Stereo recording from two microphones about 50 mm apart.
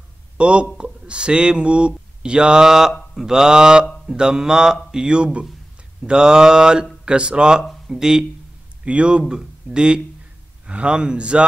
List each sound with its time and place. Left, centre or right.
0.4 s a man's voice: right